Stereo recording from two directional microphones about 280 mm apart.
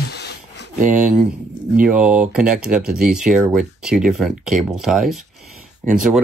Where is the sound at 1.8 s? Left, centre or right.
Centre.